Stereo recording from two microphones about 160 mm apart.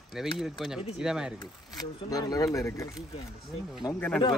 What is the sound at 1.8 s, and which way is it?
Speech, 25° left (ahead or behind).